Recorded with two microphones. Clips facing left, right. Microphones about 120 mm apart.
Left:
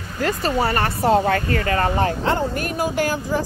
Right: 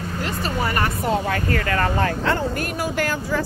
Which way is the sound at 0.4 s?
35° left (ahead or behind).